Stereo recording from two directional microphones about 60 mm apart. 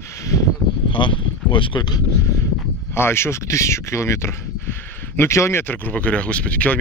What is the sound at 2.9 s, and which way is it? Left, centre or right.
Speech, left.